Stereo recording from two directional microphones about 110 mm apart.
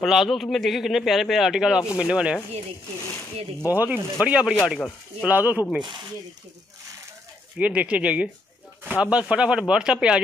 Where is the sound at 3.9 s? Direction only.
10° right (ahead or behind).